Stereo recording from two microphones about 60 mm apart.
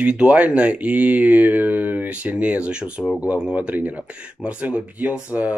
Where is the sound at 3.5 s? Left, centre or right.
Right.